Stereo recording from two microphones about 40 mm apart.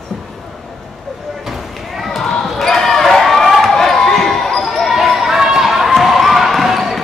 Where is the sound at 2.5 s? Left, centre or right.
Centre.